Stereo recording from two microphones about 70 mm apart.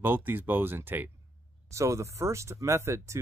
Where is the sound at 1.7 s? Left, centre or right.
Right.